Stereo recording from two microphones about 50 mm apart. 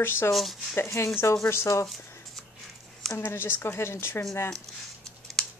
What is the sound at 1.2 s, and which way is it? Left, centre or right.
Speech, left.